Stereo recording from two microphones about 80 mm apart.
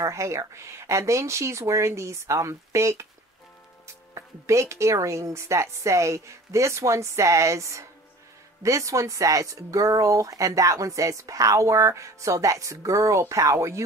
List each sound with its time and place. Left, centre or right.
0.0 s speech: right